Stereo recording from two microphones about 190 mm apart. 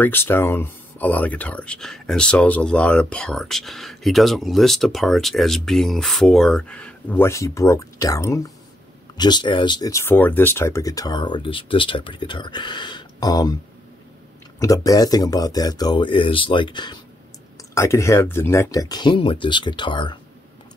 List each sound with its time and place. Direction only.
0.0 s speech: 10° left (ahead or behind)
14.6 s speech: 20° left (ahead or behind)